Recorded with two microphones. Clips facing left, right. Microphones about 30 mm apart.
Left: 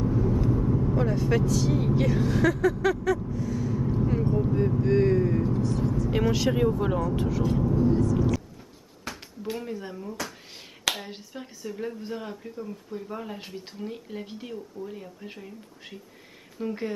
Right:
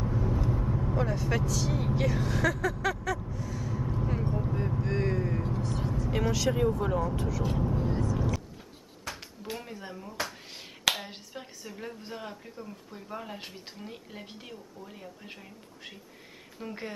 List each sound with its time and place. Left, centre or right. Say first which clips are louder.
0.0 s vehicle: left 5 dB; centre
0.9 s vehicle: left 3 dB; centre
6.0 s speech: left 3 dB; centre
7.9 s vehicle: left 7 dB; centre
9.1 s a sound: left 2 dB; centre
9.4 s speech: left 9 dB; centre